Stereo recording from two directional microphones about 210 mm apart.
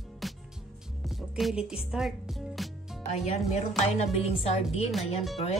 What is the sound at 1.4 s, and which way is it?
Music, centre (ahead or behind).